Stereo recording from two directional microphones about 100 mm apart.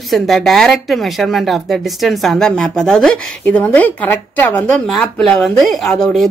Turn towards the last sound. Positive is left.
turn(degrees=5)  # may be behind; listen again after turning